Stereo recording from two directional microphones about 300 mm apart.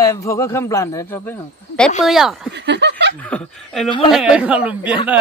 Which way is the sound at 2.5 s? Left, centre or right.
Right.